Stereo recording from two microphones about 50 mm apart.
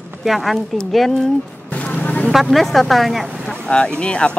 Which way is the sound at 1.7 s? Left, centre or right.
Left.